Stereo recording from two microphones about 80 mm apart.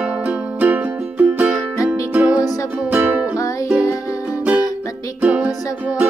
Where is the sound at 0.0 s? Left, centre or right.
Centre.